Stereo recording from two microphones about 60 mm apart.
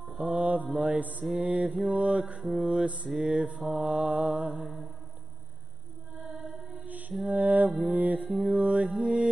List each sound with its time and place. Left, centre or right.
0.3 s mantra: right
1.2 s mantra: centre
1.5 s mantra: right
3.6 s mantra: centre
3.9 s mantra: centre
6.9 s music: right
7.8 s mantra: right